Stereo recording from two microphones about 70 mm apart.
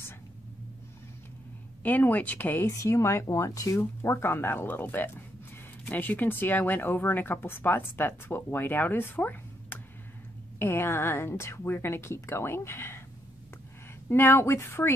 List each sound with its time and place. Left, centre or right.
1.8 s speech: left
2.7 s speech: left
4.0 s speech: left
10.6 s speech: left
14.0 s speech: left